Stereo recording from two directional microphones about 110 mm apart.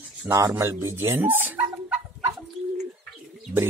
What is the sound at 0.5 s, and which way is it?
Speech, 20° right (ahead or behind).